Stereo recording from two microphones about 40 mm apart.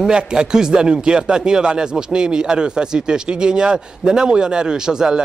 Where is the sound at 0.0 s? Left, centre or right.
Right.